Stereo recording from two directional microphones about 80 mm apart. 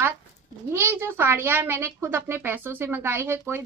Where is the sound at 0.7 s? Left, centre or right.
Right.